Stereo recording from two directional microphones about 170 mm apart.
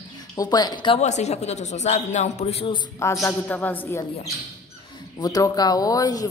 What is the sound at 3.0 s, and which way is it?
A woman's voice, 15° left (ahead or behind).